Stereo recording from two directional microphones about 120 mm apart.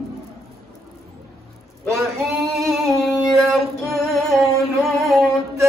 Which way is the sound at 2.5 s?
Centre (ahead or behind).